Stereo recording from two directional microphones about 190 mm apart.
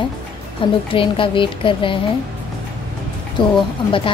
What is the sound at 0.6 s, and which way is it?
A woman's voice, 25° left (ahead or behind).